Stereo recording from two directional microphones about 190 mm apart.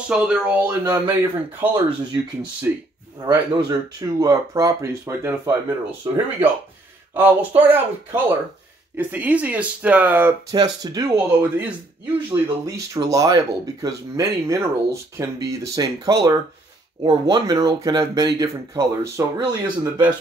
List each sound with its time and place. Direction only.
0.1 s speech: 5° right (ahead or behind)
10.5 s speech: 20° right (ahead or behind)